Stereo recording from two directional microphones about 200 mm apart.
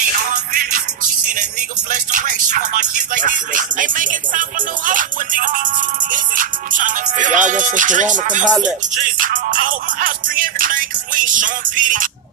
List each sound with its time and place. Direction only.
0.3 s music: 45° right (ahead or behind)
1.9 s music: 40° right (ahead or behind)